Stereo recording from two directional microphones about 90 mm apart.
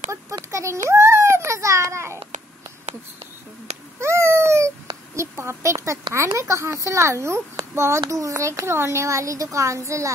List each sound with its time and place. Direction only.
0.1 s a sound: 35° right (ahead or behind)
4.0 s cat: 30° right (ahead or behind)
5.1 s a woman's voice: 30° right (ahead or behind)